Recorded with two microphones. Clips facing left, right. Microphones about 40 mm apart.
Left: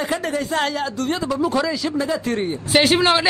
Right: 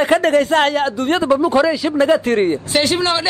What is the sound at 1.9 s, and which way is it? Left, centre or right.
Speech, right.